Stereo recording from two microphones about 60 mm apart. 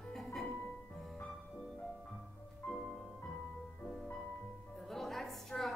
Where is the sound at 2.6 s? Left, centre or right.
Left.